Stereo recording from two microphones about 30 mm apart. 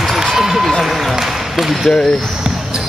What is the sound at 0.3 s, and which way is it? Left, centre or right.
Basketball bounce, centre.